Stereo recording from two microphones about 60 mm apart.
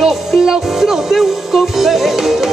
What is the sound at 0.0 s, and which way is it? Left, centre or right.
Music, centre.